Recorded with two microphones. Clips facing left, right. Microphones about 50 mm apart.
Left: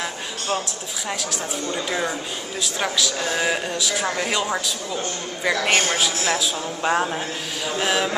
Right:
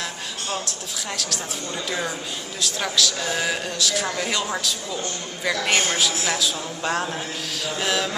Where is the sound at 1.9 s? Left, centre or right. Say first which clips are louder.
Left 2 dB; centre.